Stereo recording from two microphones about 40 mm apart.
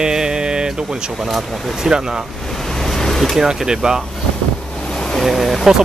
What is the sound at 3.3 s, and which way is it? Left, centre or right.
Speech, centre.